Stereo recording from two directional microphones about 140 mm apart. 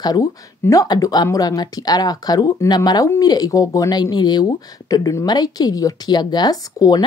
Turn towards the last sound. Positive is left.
turn(degrees=30)  # may be behind; listen again after turning